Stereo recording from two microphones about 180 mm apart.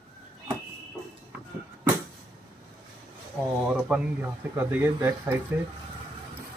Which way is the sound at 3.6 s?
5° right (ahead or behind).